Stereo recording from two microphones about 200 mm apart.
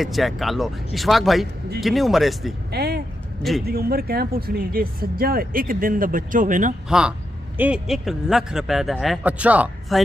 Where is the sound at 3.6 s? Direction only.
50° right (ahead or behind).